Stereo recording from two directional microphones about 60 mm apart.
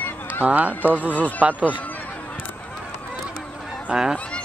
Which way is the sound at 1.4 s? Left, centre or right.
Right.